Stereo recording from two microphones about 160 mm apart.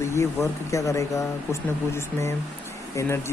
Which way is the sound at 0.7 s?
20° left (ahead or behind).